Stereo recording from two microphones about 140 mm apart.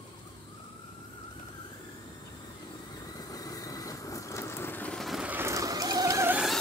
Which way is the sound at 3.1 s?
25° left (ahead or behind).